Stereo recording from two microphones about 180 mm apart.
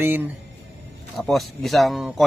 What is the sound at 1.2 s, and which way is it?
Speech, centre (ahead or behind).